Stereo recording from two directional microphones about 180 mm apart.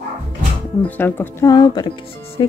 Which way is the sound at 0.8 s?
10° left (ahead or behind).